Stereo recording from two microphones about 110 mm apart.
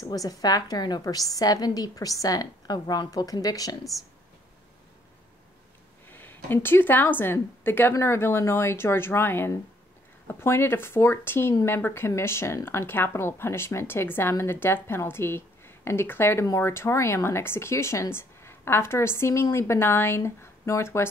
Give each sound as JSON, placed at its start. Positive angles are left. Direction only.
{"t": 0.0, "sound": "a woman's voice", "side_deg": 35}
{"t": 6.0, "sound": "speech", "side_deg": 20}